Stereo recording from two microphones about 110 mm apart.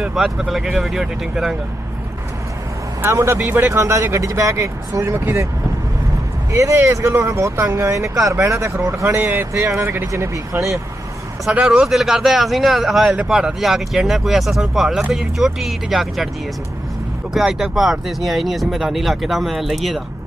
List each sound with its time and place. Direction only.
0.0 s speech: 5° right (ahead or behind)
3.0 s speech: 25° right (ahead or behind)
6.5 s speech: 25° right (ahead or behind)
11.5 s speech: 5° right (ahead or behind)
17.3 s speech: 5° right (ahead or behind)